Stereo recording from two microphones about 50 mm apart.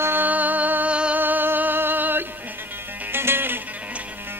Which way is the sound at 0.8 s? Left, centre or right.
Right.